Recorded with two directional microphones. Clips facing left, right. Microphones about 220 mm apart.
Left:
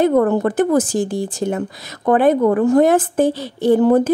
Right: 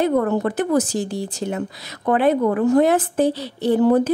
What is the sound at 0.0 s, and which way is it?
A woman's voice, 50° left (ahead or behind).